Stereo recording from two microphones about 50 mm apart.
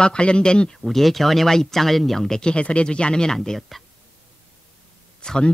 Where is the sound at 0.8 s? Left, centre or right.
Centre.